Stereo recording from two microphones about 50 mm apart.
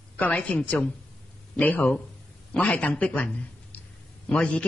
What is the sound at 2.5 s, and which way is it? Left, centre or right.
Speech, left.